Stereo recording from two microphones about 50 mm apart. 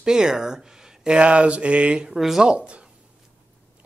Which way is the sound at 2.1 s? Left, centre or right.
Centre.